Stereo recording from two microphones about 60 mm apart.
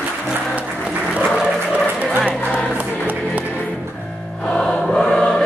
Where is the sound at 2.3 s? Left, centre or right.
Left.